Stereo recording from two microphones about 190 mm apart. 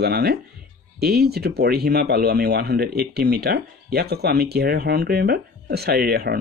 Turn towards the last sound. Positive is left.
turn(degrees=-55)  # may be behind; listen again after turning